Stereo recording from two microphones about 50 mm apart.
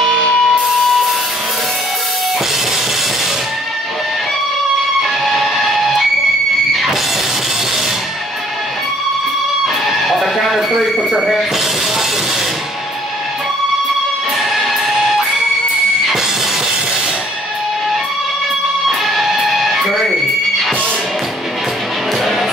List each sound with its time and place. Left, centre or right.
0.5 s music: centre
5.0 s guitar: centre
6.7 s music: centre
9.8 s a sound: centre
14.5 s music: centre
18.9 s music: centre